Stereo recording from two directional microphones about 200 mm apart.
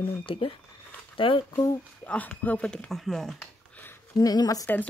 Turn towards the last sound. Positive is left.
turn(degrees=15)  # may be behind; listen again after turning